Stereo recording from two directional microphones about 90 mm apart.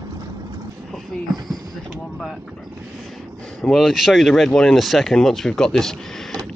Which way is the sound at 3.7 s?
Centre (ahead or behind).